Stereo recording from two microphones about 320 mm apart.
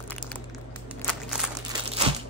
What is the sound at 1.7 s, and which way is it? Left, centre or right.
Crumpling, centre.